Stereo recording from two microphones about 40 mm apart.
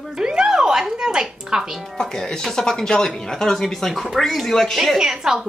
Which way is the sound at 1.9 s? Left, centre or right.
Centre.